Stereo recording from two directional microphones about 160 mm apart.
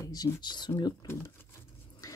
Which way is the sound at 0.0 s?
25° left (ahead or behind).